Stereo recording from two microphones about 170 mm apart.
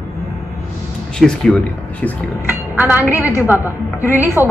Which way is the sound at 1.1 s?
5° left (ahead or behind).